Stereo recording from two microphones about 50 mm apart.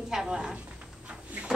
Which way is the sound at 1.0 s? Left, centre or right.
Right.